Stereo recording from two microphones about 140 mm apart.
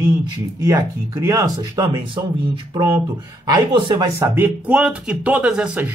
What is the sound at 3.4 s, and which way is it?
Speech, 30° right (ahead or behind).